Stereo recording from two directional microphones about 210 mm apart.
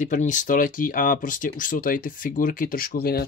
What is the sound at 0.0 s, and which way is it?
Speech, 35° left (ahead or behind).